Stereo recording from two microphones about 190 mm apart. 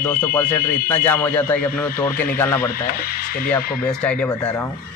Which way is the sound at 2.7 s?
50° left (ahead or behind).